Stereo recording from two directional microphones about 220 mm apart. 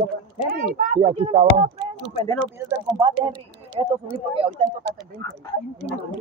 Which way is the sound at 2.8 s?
20° right (ahead or behind).